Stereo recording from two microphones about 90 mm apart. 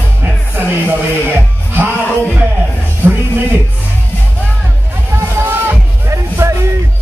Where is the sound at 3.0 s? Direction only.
25° right (ahead or behind).